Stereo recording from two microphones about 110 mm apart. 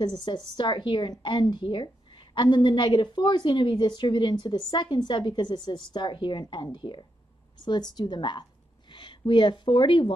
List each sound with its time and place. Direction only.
0.0 s a woman's voice: 45° left (ahead or behind)